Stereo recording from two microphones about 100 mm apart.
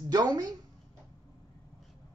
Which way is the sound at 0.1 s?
40° right (ahead or behind).